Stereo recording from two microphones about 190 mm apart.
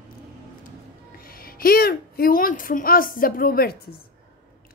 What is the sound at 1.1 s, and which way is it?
Speech, 50° left (ahead or behind).